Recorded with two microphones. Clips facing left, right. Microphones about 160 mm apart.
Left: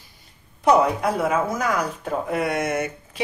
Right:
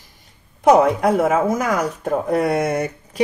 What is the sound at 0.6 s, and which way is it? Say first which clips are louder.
A woman's voice: right 4 dB; 45° right (ahead or behind).